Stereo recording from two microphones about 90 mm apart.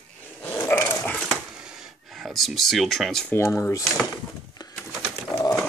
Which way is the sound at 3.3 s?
30° left (ahead or behind).